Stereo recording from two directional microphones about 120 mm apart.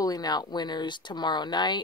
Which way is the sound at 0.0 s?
35° left (ahead or behind).